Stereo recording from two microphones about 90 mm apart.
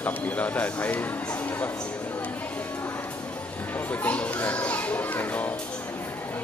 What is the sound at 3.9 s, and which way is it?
Speech, 15° left (ahead or behind).